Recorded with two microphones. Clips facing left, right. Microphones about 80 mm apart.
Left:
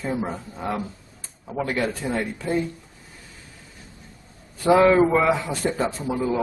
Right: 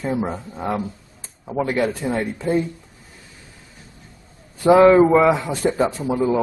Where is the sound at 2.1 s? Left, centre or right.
Right.